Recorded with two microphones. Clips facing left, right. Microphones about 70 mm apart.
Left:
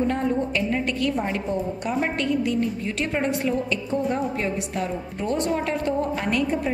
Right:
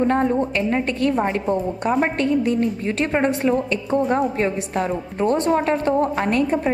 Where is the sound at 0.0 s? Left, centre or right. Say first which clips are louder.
Right 5 dB; right.